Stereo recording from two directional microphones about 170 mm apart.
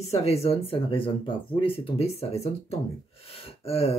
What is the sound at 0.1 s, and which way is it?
A woman's voice, 40° left (ahead or behind).